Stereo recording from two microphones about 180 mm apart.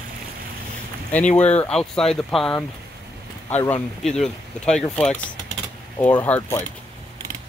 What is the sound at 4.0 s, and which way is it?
Speech, 5° left (ahead or behind).